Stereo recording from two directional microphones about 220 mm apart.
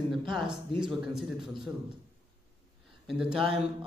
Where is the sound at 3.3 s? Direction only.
25° right (ahead or behind).